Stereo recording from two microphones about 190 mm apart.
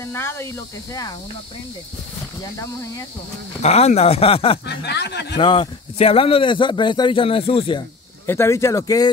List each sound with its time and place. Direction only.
0.0 s speech: 15° left (ahead or behind)
3.6 s speech: 35° left (ahead or behind)
4.6 s speech: 60° left (ahead or behind)
5.4 s speech: 25° left (ahead or behind)
8.3 s speech: 15° left (ahead or behind)